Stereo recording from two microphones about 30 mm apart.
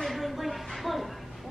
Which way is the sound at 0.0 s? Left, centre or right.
Centre.